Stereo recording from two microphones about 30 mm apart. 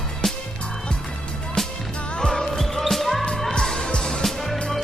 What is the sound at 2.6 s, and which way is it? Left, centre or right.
Music, centre.